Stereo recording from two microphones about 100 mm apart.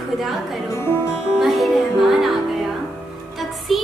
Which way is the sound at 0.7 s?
25° left (ahead or behind).